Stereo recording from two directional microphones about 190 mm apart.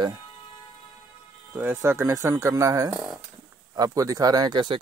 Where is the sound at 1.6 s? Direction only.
10° right (ahead or behind).